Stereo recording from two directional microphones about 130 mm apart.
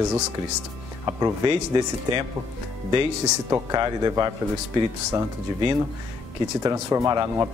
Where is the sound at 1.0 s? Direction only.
25° right (ahead or behind).